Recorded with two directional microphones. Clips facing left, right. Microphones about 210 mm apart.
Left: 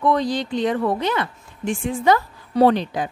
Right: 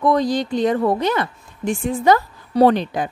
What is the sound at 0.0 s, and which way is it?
Speech, 40° right (ahead or behind).